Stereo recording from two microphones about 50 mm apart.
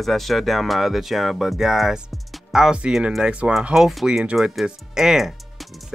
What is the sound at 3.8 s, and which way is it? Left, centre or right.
Speech, centre.